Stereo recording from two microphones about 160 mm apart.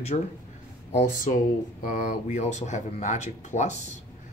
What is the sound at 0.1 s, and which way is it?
Speech, 45° left (ahead or behind).